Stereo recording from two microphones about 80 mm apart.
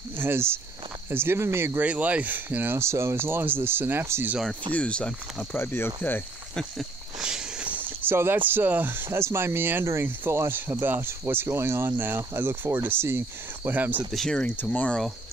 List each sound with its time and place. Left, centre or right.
0.2 s speech: right
1.8 s speech: centre
4.7 s speech: centre
5.6 s speech: left
7.2 s walk: centre
7.7 s speech: right
14.1 s speech: centre